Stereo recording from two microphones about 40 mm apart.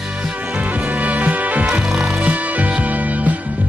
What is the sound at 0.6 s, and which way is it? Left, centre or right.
Music, right.